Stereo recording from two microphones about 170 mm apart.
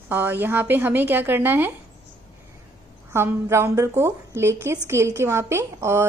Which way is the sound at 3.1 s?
15° right (ahead or behind).